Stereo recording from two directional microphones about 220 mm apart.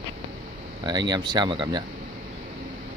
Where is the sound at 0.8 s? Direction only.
20° right (ahead or behind).